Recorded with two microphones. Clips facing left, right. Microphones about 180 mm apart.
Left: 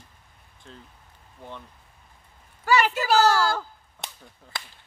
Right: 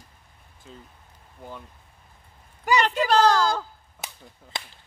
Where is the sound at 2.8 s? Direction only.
5° left (ahead or behind).